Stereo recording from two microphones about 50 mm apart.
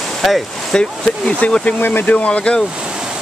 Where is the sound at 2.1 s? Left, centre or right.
Left.